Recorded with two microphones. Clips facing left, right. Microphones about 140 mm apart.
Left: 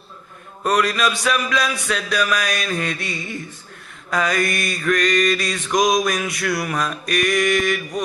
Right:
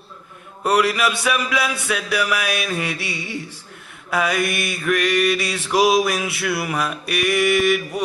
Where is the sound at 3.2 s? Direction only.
75° right (ahead or behind).